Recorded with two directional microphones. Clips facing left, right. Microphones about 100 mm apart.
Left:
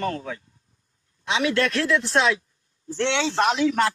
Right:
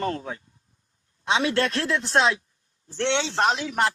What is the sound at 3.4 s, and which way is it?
Speech, 35° right (ahead or behind).